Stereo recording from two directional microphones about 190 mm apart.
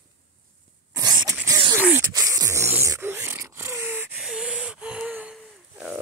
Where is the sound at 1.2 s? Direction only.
15° right (ahead or behind); by 6.0 s centre (ahead or behind).